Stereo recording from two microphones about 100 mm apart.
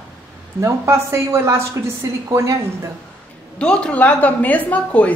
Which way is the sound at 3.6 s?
10° left (ahead or behind).